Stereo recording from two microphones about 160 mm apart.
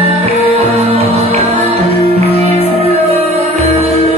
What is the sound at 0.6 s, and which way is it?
Music, 40° right (ahead or behind).